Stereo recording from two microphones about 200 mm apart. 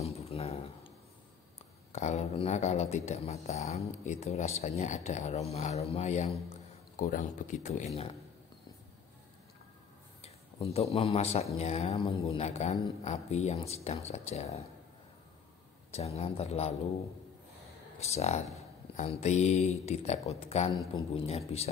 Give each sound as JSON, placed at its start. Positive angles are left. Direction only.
{"t": 0.0, "sound": "a sound", "side_deg": 30}
{"t": 1.9, "sound": "speech", "side_deg": 35}
{"t": 10.2, "sound": "speech", "side_deg": 30}
{"t": 15.9, "sound": "speech", "side_deg": 30}
{"t": 18.0, "sound": "speech", "side_deg": 35}